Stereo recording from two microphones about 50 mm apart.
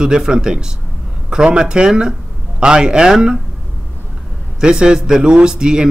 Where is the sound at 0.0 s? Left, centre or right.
Centre.